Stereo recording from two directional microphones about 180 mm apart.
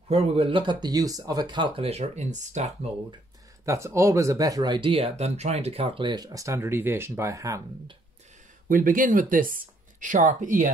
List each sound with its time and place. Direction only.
0.1 s speech: 35° right (ahead or behind)
3.6 s speech: 15° right (ahead or behind)
8.6 s speech: 50° right (ahead or behind)